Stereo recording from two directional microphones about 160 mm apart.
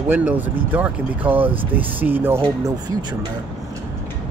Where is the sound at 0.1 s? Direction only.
10° right (ahead or behind).